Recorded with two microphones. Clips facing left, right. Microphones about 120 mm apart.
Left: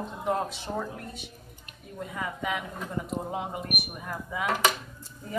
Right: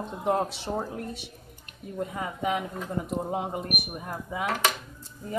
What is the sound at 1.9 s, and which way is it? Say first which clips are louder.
Speech: right 2 dB; 35° right (ahead or behind).